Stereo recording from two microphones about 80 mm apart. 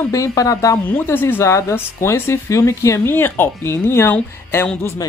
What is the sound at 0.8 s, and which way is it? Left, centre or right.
Speech, left.